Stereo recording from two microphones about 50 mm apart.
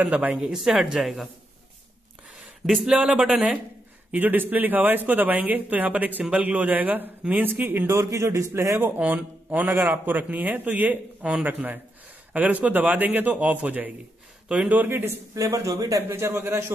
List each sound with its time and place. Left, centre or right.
0.0 s speech: right
0.4 s speech: centre
2.6 s speech: centre
4.1 s speech: right
7.8 s a man's voice: right
8.9 s speech: right
13.3 s a man's voice: right
15.5 s a man's voice: right